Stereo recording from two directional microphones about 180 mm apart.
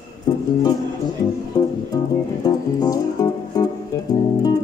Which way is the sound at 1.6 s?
20° left (ahead or behind).